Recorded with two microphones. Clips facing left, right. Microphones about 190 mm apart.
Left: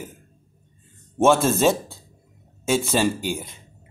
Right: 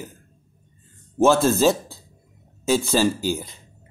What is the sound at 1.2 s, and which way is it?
Speech, centre (ahead or behind).